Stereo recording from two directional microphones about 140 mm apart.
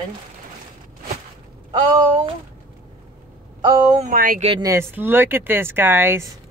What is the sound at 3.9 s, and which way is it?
Speech, 80° right.